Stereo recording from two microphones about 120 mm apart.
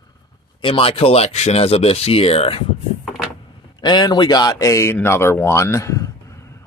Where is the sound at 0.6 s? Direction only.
50° left (ahead or behind).